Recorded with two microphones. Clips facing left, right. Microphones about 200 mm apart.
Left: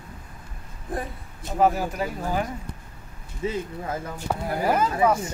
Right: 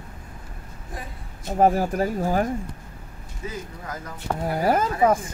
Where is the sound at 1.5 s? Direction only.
50° right (ahead or behind).